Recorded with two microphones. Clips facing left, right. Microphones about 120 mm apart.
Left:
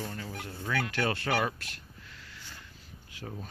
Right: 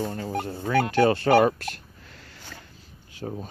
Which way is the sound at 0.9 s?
30° right (ahead or behind).